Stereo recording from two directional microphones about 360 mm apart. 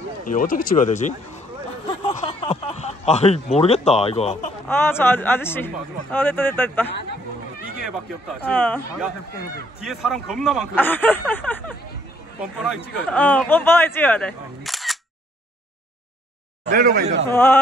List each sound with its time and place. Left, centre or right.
0.3 s speech: left
2.0 s a sound: centre
4.6 s speech: centre
16.6 s speech: right
17.3 s speech: centre